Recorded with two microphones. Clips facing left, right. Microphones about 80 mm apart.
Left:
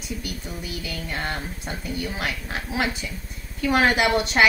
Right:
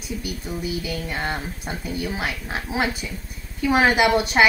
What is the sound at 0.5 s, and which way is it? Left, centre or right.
Speech, right.